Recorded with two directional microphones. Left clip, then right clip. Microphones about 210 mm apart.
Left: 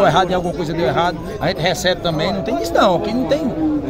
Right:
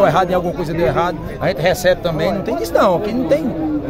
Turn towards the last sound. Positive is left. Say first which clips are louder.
# right 1 dB
turn(degrees=-15)  # may be behind; listen again after turning